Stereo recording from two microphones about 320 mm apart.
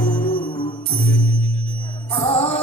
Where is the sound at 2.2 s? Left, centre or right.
Centre.